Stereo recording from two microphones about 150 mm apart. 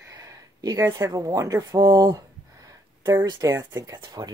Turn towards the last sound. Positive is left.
turn(degrees=-25)  # may be behind; listen again after turning